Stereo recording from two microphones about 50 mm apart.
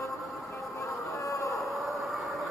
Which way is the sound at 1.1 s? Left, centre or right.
Left.